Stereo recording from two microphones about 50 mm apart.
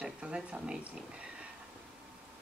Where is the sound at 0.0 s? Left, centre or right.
Centre.